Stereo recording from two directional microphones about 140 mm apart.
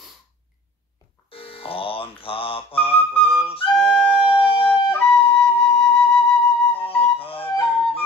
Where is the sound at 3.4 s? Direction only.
40° left (ahead or behind).